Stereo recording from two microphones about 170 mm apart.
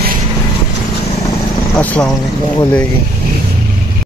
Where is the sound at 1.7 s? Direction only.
10° left (ahead or behind).